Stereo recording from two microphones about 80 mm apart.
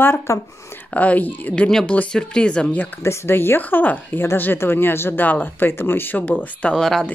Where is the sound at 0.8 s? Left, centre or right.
Centre.